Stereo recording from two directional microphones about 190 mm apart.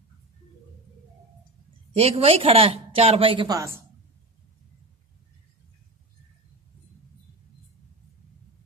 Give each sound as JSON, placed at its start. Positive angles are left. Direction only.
{"t": 2.0, "sound": "speech", "side_deg": -30}